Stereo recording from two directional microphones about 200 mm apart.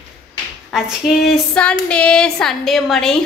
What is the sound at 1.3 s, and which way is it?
A woman's voice, 5° left (ahead or behind).